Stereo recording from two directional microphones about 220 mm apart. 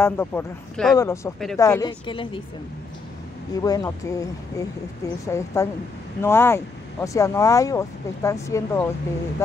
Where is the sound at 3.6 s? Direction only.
15° left (ahead or behind).